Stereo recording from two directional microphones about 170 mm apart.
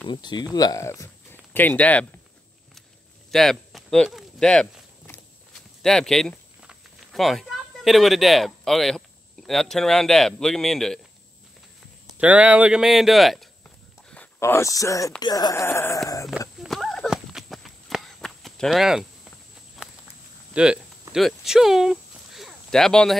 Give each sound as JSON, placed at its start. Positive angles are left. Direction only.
{"t": 0.0, "sound": "speech", "side_deg": 25}
{"t": 3.3, "sound": "a sound", "side_deg": 0}
{"t": 9.5, "sound": "speech", "side_deg": 5}
{"t": 12.2, "sound": "speech", "side_deg": -5}
{"t": 14.1, "sound": "speech", "side_deg": 10}
{"t": 16.6, "sound": "walk", "side_deg": 0}
{"t": 20.5, "sound": "speech", "side_deg": -5}
{"t": 21.1, "sound": "a sound", "side_deg": 0}